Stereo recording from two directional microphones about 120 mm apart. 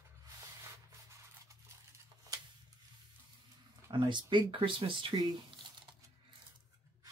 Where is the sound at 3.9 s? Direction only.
40° right (ahead or behind).